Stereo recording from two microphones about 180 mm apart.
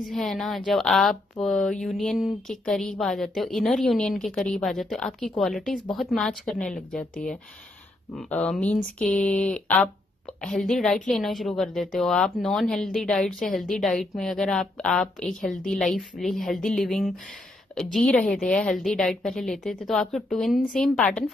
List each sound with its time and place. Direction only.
0.0 s speech: centre (ahead or behind)
8.2 s speech: 5° left (ahead or behind)